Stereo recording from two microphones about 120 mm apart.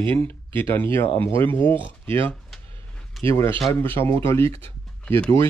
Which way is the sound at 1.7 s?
45° right (ahead or behind).